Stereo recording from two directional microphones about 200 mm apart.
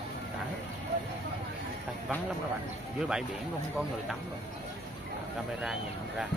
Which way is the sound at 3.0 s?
5° right (ahead or behind).